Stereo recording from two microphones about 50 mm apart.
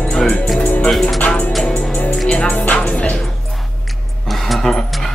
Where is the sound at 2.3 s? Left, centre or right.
Left.